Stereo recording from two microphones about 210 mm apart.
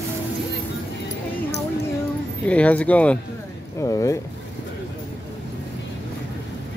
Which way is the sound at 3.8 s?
15° left (ahead or behind).